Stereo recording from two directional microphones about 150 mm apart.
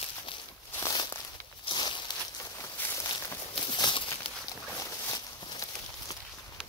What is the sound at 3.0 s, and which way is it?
Walk, 30° left (ahead or behind).